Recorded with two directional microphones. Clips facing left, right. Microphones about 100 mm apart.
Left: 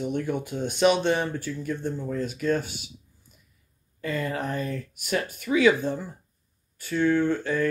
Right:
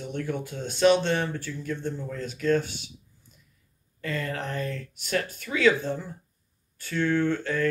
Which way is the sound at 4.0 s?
15° left (ahead or behind).